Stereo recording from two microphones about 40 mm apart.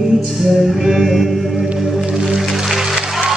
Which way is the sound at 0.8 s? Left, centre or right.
Centre.